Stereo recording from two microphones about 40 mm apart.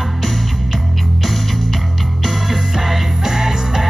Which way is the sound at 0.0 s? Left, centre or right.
Centre.